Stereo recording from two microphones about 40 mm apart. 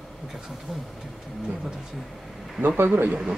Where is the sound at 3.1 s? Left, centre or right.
Centre.